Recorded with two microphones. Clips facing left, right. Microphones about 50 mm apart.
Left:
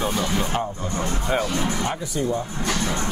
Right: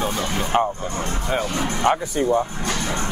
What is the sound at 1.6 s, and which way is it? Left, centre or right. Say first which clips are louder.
Speech: right 5 dB; right.